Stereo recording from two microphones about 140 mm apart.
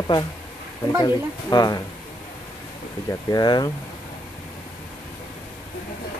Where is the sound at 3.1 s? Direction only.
25° left (ahead or behind).